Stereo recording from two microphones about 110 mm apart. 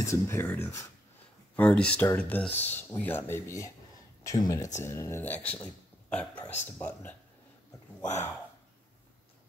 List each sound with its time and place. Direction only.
0.0 s a man's voice: 25° left (ahead or behind)
5.2 s a man's voice: 15° left (ahead or behind)